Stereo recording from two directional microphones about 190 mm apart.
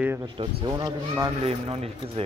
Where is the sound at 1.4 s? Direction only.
30° right (ahead or behind).